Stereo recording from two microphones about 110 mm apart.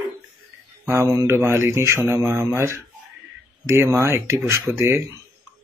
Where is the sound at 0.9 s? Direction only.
25° right (ahead or behind).